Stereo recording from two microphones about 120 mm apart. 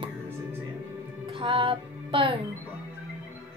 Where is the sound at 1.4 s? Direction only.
45° right (ahead or behind).